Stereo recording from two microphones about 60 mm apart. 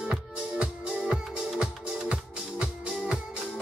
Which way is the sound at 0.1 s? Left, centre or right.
Centre.